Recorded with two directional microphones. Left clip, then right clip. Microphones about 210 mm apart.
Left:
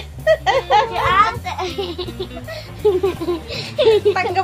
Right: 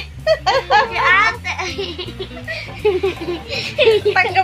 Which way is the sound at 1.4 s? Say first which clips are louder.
Right 1 dB; 45° left (ahead or behind).